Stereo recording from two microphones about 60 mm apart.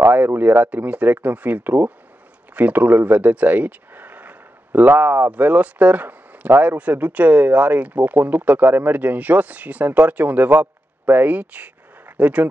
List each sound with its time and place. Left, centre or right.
0.0 s speech: right